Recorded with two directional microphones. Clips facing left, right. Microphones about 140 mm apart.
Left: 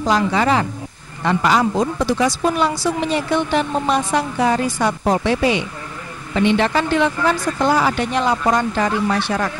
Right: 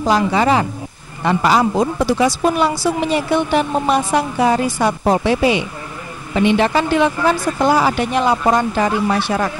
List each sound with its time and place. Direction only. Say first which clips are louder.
0.0 s speech: right 2 dB; 15° right (ahead or behind)
1.8 s speech: right 2 dB; 10° right (ahead or behind)